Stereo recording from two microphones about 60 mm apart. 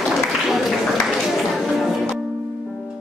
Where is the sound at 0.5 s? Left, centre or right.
Centre.